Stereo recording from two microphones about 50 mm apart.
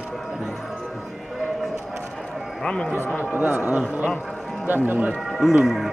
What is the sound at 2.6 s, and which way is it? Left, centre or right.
Speech, centre.